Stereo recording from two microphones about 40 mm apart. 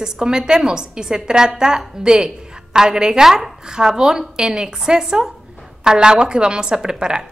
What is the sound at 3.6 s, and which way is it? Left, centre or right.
A woman's voice, centre.